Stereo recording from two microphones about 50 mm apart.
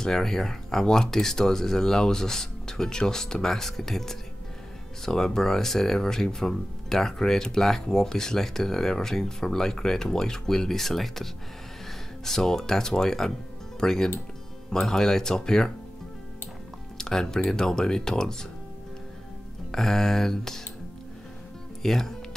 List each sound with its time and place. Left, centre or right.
0.0 s speech: centre
12.3 s speech: centre
17.0 s speech: centre
19.7 s speech: centre
21.8 s speech: centre